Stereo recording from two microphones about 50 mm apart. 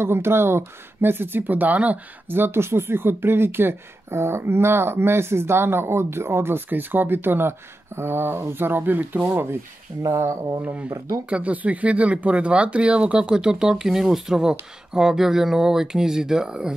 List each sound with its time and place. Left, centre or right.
0.0 s speech: right
2.3 s speech: right
10.0 s speech: right
10.6 s speech: right